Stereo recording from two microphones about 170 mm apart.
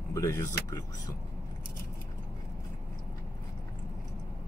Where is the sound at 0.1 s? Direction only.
20° left (ahead or behind).